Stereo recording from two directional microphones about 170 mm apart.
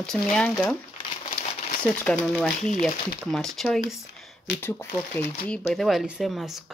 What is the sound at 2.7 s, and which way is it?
Speech, 50° left (ahead or behind).